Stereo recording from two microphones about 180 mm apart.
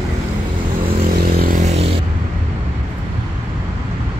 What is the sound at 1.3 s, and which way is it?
Music, 50° right (ahead or behind).